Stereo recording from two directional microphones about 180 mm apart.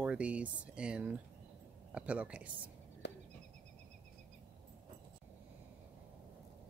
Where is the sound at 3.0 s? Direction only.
70° left (ahead or behind).